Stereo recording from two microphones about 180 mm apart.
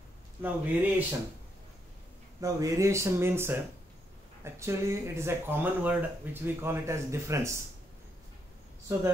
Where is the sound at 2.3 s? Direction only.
20° right (ahead or behind).